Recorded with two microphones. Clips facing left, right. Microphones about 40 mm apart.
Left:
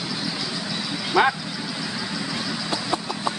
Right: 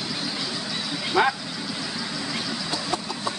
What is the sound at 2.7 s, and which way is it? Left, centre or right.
Vehicle, left.